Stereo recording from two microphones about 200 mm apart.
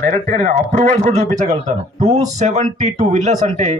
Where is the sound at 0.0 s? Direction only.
40° right (ahead or behind).